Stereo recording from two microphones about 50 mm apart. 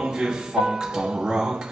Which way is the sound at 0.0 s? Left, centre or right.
Centre.